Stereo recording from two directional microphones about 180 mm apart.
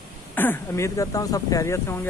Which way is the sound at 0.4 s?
15° left (ahead or behind).